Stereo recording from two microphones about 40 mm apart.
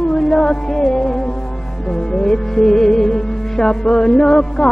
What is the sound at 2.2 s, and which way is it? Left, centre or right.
Music, centre.